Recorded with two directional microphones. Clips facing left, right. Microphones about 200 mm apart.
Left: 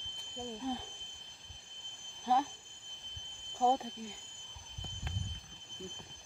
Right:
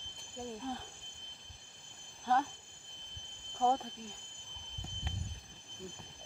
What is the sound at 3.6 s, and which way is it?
Speech, 10° left (ahead or behind).